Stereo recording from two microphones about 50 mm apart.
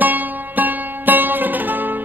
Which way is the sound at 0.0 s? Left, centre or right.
Right.